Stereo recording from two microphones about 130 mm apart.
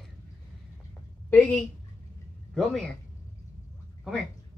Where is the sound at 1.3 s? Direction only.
10° left (ahead or behind).